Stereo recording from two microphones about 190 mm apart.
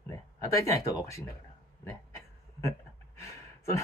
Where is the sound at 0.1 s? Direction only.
15° left (ahead or behind).